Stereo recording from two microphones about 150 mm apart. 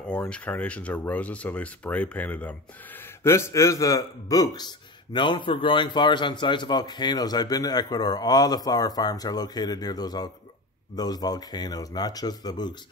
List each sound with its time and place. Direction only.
0.1 s a man's voice: 10° left (ahead or behind); by 12.7 s 25° left (ahead or behind)